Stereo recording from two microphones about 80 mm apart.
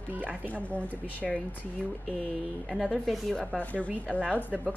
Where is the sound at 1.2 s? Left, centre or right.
Centre.